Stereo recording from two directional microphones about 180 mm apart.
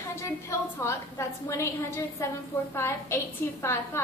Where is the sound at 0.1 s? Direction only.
15° left (ahead or behind).